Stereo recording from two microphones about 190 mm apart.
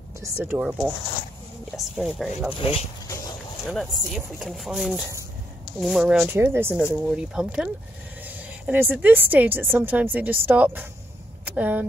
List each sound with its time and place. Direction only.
0.2 s a woman's voice: 10° right (ahead or behind)
2.0 s speech: centre (ahead or behind)
2.5 s speech: 30° left (ahead or behind)
3.6 s a woman's voice: centre (ahead or behind)